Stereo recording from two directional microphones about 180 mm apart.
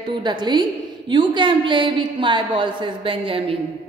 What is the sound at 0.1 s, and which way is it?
A woman's voice, 25° right (ahead or behind).